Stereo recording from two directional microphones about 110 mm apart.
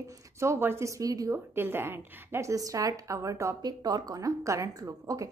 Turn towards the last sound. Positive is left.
turn(degrees=-30)  # may be behind; listen again after turning